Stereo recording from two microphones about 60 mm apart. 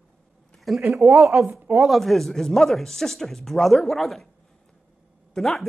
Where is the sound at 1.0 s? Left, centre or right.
Right.